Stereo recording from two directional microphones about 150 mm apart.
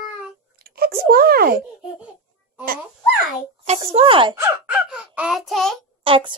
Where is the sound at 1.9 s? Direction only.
10° right (ahead or behind).